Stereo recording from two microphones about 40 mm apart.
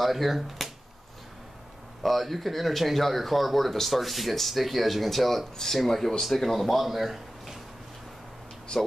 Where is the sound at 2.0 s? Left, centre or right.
Centre.